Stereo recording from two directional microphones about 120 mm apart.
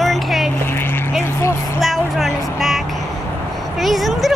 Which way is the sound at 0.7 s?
20° left (ahead or behind).